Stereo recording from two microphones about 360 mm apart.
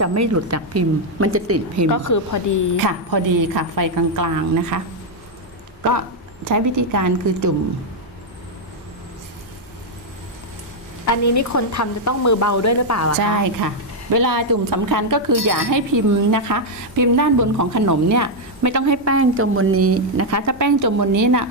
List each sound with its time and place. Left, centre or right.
0.0 s a woman's voice: right
1.9 s a woman's voice: left
2.8 s a woman's voice: right
6.5 s a woman's voice: right
11.1 s speech: left
13.4 s a woman's voice: right